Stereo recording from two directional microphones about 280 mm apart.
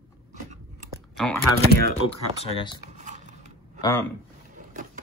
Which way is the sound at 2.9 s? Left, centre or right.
Right.